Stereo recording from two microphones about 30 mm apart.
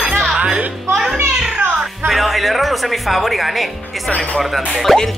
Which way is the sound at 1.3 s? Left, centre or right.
Right.